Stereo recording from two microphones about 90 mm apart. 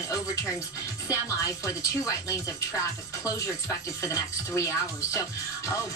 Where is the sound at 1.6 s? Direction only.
35° left (ahead or behind).